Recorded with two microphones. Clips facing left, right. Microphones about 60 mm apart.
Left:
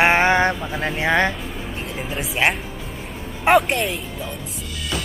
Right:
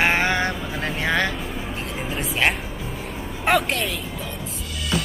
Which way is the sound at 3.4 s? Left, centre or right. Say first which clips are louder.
Left 4 dB; centre.